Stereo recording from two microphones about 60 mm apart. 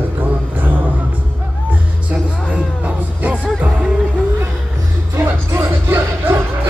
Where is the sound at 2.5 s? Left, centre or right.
Right.